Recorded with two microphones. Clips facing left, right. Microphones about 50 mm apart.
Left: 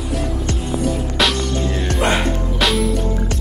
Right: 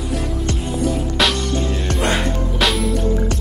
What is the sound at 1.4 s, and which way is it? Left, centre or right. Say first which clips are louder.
Music: even; left.